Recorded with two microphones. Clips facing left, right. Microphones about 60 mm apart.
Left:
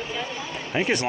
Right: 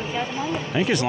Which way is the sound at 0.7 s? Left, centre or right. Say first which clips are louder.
Even; left.